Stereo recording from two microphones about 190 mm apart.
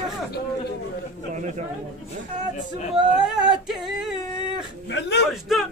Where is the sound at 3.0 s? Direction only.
5° right (ahead or behind).